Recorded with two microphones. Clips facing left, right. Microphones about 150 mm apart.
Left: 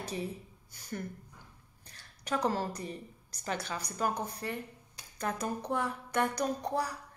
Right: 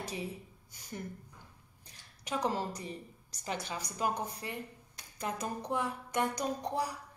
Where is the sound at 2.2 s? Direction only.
15° right (ahead or behind).